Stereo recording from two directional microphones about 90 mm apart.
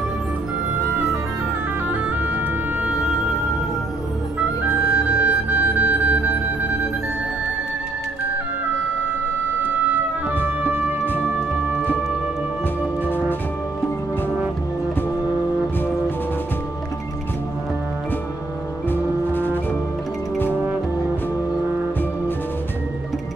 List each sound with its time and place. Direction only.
1.9 s music: 15° right (ahead or behind)
4.6 s music: 20° right (ahead or behind)
9.6 s music: 20° right (ahead or behind)
18.9 s music: 20° left (ahead or behind)